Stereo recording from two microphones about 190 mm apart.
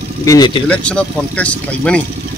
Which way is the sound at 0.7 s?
5° left (ahead or behind).